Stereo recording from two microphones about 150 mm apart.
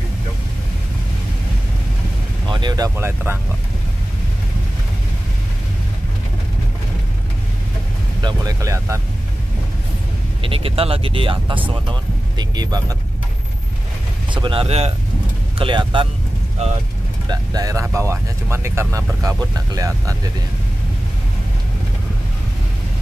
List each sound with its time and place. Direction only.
2.5 s speech: 25° right (ahead or behind)
8.2 s speech: 25° right (ahead or behind)
10.4 s speech: 40° right (ahead or behind)
14.3 s speech: 35° right (ahead or behind)
16.6 s speech: 45° right (ahead or behind)
17.3 s speech: 25° right (ahead or behind)